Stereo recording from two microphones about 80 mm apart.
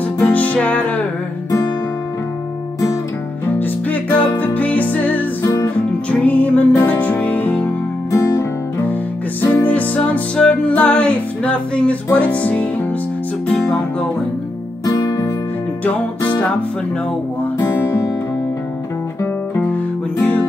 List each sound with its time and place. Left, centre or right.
0.2 s music: centre
3.5 s music: left
8.1 s music: left
9.4 s music: left
15.0 s music: left
17.6 s music: left